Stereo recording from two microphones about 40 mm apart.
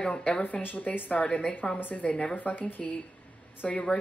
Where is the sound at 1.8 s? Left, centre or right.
Left.